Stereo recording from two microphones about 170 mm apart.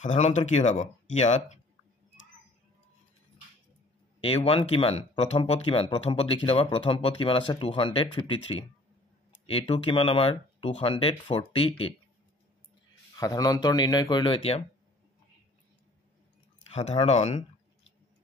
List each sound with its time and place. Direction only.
0.0 s speech: 45° left (ahead or behind)
4.2 s speech: 35° left (ahead or behind)
13.1 s speech: 20° left (ahead or behind)
16.7 s speech: 40° left (ahead or behind)